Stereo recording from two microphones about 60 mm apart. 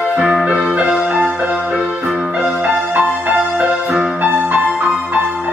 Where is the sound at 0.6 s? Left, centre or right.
Centre.